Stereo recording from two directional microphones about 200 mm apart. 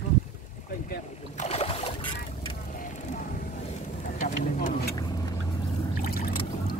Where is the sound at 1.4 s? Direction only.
30° left (ahead or behind).